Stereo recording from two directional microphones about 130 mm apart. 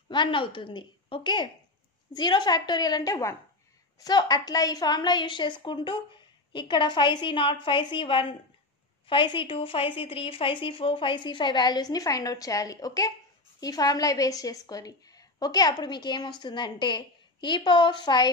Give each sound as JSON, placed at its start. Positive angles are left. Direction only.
{"t": 0.1, "sound": "a woman's voice", "side_deg": 40}